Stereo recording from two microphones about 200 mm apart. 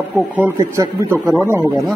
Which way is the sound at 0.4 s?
15° right (ahead or behind).